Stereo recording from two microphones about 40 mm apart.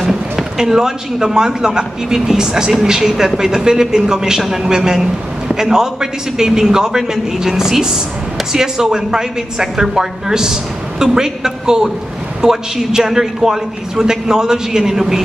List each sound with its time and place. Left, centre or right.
0.1 s a man's voice: centre